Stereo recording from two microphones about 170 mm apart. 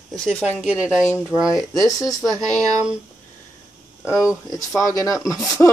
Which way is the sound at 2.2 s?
20° right (ahead or behind).